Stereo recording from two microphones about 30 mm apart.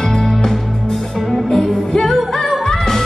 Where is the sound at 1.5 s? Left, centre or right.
Centre.